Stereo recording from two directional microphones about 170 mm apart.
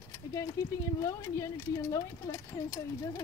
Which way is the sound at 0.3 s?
20° left (ahead or behind).